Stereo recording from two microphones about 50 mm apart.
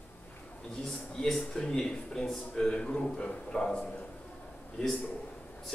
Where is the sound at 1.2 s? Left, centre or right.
Centre.